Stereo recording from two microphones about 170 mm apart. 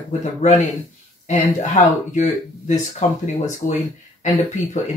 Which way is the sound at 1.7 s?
45° left (ahead or behind).